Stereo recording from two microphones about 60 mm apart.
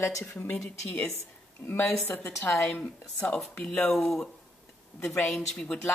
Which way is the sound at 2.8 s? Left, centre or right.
Left.